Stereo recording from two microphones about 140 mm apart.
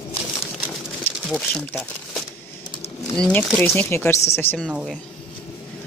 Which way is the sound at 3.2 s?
10° left (ahead or behind).